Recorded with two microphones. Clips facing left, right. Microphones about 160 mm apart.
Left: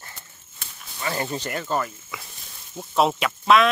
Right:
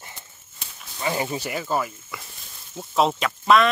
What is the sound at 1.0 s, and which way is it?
Speech, 10° right (ahead or behind).